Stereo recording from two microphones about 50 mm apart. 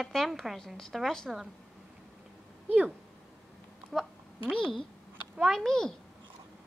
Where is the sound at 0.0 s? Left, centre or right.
Centre.